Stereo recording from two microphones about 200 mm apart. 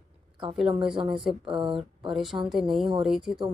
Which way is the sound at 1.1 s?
Centre (ahead or behind).